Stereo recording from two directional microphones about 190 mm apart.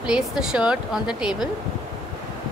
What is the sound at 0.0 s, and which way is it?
Speech, 5° right (ahead or behind).